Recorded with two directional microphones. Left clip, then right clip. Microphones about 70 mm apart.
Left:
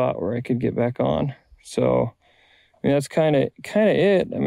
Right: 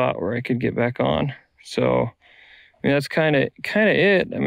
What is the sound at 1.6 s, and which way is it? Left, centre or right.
Speech, left.